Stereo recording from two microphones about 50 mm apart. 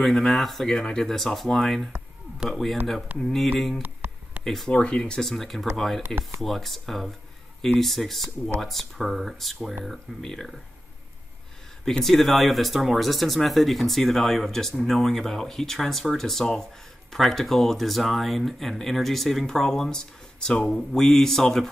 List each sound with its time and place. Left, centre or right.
0.0 s speech: centre
0.7 s speech: centre
1.0 s speech: centre
3.8 s a sound: right
4.6 s speech: left
5.2 s speech: centre
12.0 s speech: centre